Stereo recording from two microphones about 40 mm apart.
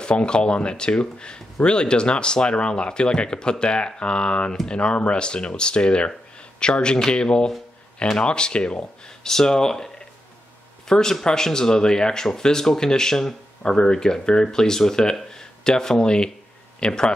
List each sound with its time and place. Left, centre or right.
0.0 s speech: left
10.9 s speech: centre
15.3 s a sound: centre
16.0 s speech: left